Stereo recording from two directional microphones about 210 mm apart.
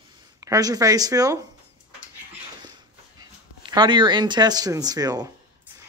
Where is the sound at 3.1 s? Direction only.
20° right (ahead or behind).